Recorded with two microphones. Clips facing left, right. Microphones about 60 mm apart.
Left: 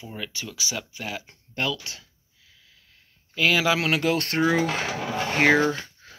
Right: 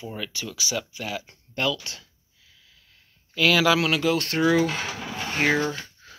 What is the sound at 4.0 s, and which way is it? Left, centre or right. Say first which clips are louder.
Speech: even; left.